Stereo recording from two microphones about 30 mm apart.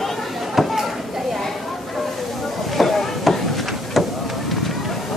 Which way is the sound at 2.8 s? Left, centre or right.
Centre.